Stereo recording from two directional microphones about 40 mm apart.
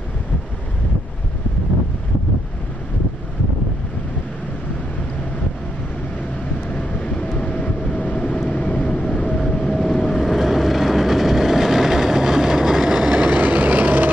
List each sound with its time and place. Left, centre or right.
6.7 s train: left
8.5 s vehicle: left
9.3 s vehicle: left
10.2 s vehicle: centre
13.3 s vehicle: right